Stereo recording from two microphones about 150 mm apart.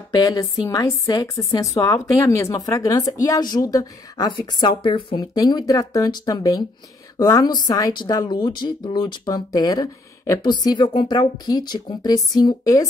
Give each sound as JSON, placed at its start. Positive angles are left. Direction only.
{"t": 0.1, "sound": "speech", "side_deg": 20}